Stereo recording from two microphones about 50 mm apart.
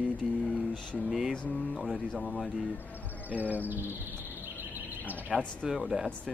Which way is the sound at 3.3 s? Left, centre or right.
Right.